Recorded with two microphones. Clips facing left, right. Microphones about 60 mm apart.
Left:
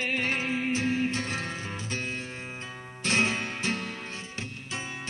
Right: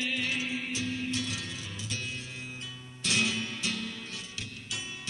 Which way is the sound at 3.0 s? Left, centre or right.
Left.